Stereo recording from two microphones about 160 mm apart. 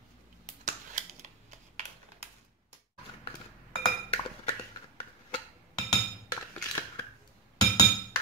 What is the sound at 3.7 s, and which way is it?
Chink, 35° left (ahead or behind).